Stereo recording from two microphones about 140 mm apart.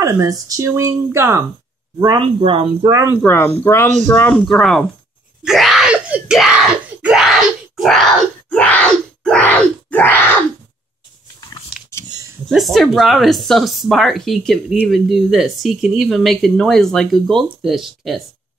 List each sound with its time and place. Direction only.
0.0 s speech: 25° right (ahead or behind)
2.0 s speech: 30° right (ahead or behind)
3.2 s speech: 10° left (ahead or behind)
5.4 s wail: centre (ahead or behind)
12.4 s speech: centre (ahead or behind)